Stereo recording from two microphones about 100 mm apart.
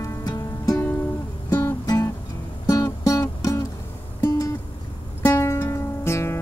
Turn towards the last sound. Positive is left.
turn(degrees=25)  # may be behind; listen again after turning